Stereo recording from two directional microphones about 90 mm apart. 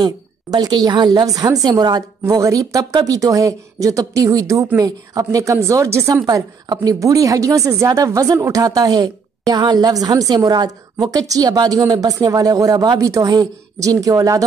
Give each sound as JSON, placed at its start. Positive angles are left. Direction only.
{"t": 0.0, "sound": "a woman's voice", "side_deg": -50}
{"t": 2.2, "sound": "a woman's voice", "side_deg": -35}
{"t": 6.2, "sound": "a woman's voice", "side_deg": -45}
{"t": 13.0, "sound": "a woman's voice", "side_deg": -40}